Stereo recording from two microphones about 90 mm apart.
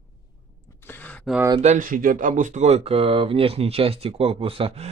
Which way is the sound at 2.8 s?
90° right.